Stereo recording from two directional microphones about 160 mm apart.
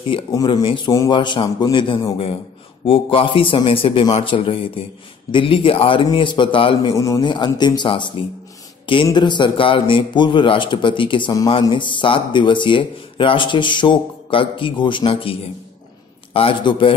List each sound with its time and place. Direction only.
0.3 s a man's voice: 25° left (ahead or behind)
6.9 s a man's voice: 20° left (ahead or behind)
16.3 s a man's voice: 35° left (ahead or behind)